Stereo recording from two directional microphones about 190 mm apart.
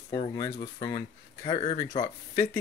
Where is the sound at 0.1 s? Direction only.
25° left (ahead or behind).